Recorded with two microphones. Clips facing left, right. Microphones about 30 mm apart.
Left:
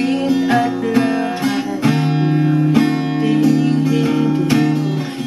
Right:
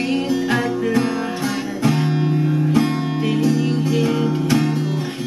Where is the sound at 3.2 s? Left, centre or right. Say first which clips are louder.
Left 5 dB; centre.